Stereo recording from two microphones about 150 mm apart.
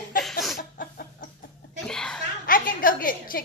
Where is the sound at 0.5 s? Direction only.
65° left (ahead or behind).